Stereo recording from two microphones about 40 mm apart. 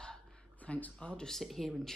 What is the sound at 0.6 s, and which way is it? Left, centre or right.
Speech, left.